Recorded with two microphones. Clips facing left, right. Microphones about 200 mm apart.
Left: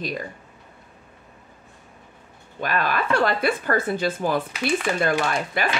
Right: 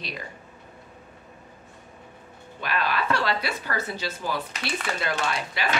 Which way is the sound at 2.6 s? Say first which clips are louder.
Left 3 dB; 45° left (ahead or behind).